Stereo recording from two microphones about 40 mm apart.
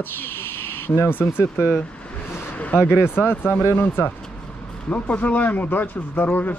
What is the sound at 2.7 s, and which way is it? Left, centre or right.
Speech, left.